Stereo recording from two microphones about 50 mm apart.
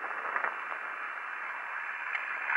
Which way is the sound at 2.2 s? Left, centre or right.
Centre.